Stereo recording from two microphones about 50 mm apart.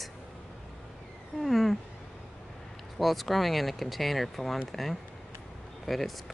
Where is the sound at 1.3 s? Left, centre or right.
Centre.